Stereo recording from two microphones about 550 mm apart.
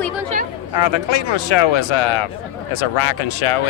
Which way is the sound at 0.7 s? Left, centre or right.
Left.